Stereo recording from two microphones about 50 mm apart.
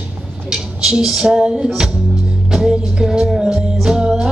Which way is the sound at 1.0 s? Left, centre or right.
Centre.